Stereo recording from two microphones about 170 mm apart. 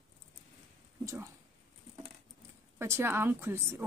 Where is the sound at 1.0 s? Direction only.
15° right (ahead or behind).